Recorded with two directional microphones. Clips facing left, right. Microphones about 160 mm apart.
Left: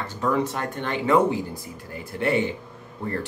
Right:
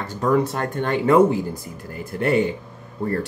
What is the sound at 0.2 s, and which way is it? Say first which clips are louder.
Speech: right 4 dB; 45° right (ahead or behind).